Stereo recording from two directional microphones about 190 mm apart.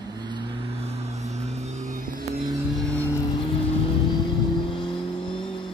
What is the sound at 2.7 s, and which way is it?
Vehicle, 5° left (ahead or behind).